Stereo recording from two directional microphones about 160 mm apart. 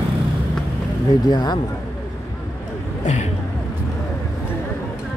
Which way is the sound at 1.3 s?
25° left (ahead or behind).